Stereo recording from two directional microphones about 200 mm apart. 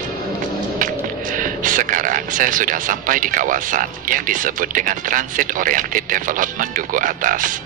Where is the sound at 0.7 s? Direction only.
40° right (ahead or behind).